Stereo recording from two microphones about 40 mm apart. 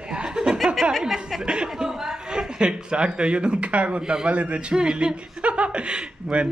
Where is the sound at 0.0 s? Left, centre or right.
Right.